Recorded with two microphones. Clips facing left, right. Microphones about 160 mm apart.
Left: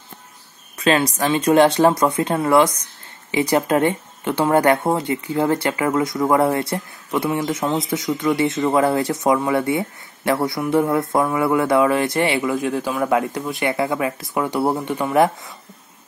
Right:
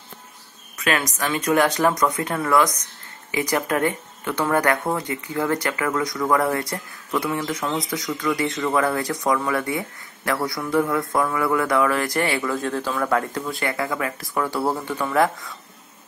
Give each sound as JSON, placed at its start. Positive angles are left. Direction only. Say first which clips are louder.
{"t": 0.7, "sound": "speech", "louder": "left 6 dB", "side_deg": 30}